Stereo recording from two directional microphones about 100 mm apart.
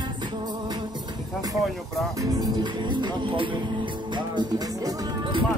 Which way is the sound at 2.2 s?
45° right (ahead or behind).